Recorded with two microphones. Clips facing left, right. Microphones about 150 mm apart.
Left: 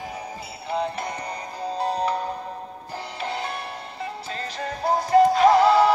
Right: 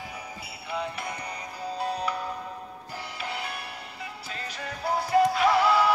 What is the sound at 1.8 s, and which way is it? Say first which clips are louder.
Music: left 6 dB; 35° left (ahead or behind).